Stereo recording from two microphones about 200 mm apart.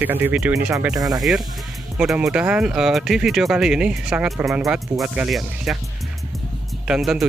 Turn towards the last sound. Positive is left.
turn(degrees=-5)  # may be behind; listen again after turning